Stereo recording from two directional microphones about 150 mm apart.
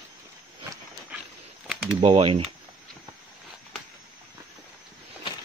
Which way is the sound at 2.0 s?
45° right (ahead or behind).